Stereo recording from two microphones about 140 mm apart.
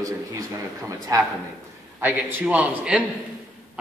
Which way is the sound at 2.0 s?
10° right (ahead or behind).